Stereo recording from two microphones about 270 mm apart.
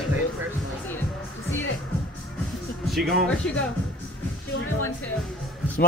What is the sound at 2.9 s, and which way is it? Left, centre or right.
Speech, centre.